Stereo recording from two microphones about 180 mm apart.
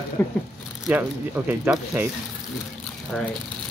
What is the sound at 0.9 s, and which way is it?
Speech, 10° right (ahead or behind).